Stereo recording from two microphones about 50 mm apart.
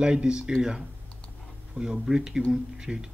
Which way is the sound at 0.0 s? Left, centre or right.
Centre.